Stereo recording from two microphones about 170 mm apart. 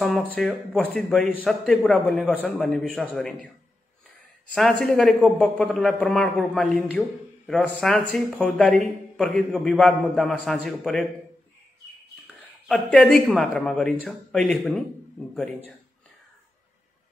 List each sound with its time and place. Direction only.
0.0 s a man's voice: 5° left (ahead or behind)
4.6 s a man's voice: 5° left (ahead or behind)
12.7 s a man's voice: 5° left (ahead or behind)